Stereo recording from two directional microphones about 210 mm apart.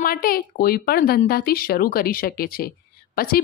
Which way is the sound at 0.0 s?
45° left (ahead or behind).